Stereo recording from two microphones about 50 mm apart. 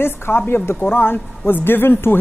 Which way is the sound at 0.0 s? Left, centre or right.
Left.